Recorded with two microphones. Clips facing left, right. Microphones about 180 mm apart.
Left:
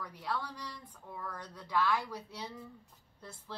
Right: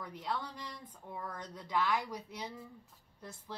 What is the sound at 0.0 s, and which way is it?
A woman's voice, 20° right (ahead or behind).